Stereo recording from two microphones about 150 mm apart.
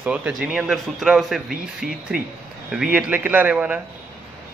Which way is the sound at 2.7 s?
5° right (ahead or behind).